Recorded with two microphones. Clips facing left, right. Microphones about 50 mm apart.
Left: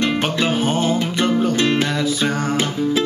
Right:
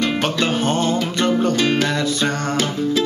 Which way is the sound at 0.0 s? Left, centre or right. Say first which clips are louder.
Even; centre.